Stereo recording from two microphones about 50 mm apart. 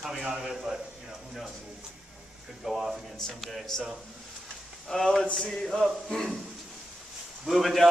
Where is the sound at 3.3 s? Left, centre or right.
Centre.